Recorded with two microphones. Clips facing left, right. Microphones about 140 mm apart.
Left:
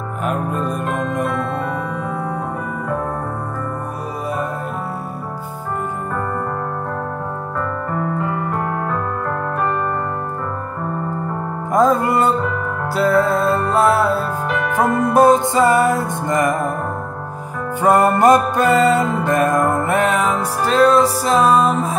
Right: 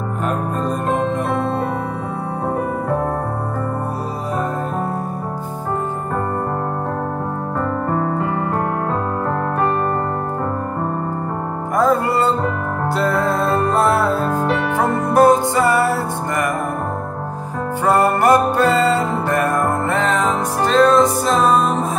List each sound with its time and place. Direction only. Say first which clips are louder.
0.8 s music: right 2 dB; 25° right (ahead or behind)
11.7 s music: left 2 dB; 15° left (ahead or behind)
12.9 s music: left 4 dB; centre (ahead or behind)
15.1 s music: even; 20° left (ahead or behind)
17.8 s music: left 2 dB; 15° left (ahead or behind); by 21.6 s centre (ahead or behind)